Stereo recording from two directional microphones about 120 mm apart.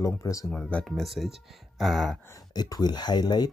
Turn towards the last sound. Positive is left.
turn(degrees=35)  # may be behind; listen again after turning